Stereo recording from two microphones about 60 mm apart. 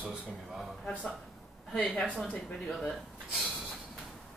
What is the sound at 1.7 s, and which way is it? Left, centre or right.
Speech, centre.